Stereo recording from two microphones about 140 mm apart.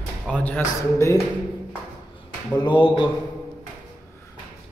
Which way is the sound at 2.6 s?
35° left (ahead or behind).